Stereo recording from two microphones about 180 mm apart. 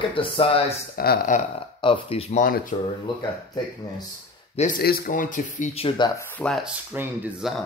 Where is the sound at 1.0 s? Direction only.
55° left (ahead or behind).